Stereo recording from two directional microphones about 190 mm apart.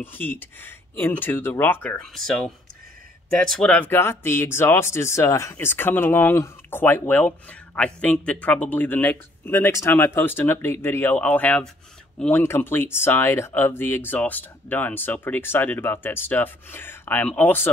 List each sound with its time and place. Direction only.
0.0 s speech: 10° left (ahead or behind)